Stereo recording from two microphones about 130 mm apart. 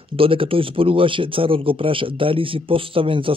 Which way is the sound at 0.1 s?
45° right (ahead or behind).